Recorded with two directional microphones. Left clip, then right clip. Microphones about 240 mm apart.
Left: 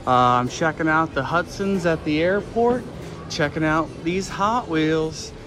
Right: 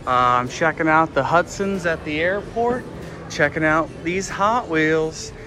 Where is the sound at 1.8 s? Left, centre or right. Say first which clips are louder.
Left 2 dB; left.